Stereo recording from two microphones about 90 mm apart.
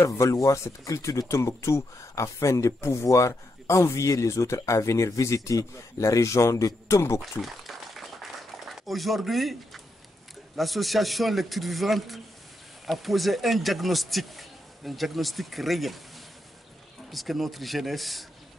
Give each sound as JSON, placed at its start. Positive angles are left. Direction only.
{"t": 0.0, "sound": "speech", "side_deg": 35}
{"t": 7.2, "sound": "a sound", "side_deg": 0}
{"t": 10.5, "sound": "speech", "side_deg": 0}
{"t": 17.1, "sound": "speech", "side_deg": 0}